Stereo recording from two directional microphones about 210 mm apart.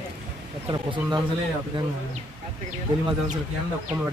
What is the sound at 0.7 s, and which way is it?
Speech, 20° right (ahead or behind).